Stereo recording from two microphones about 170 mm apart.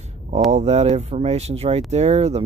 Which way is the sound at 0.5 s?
40° right (ahead or behind).